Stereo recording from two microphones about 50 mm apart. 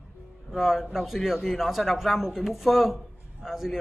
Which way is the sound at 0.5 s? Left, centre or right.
Centre.